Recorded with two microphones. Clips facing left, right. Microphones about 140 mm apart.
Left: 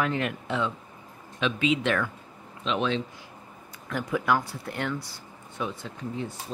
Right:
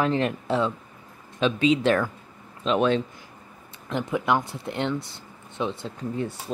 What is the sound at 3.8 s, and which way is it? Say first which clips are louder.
Speech: right 2 dB; 20° right (ahead or behind).